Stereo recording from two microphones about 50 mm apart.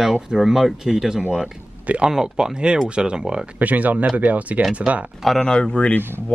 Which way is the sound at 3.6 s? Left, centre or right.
Right.